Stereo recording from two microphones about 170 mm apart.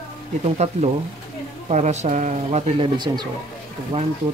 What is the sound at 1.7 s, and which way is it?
Speech, 40° right (ahead or behind).